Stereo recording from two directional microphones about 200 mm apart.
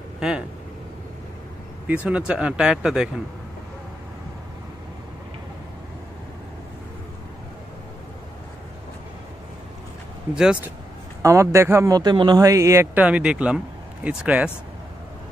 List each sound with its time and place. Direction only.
2.0 s speech: 5° right (ahead or behind)
10.3 s speech: 5° right (ahead or behind)